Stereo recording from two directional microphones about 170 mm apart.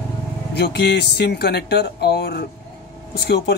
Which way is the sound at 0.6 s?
75° left (ahead or behind).